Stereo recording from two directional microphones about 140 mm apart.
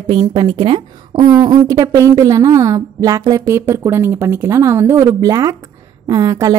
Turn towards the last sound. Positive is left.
turn(degrees=-25)  # may be behind; listen again after turning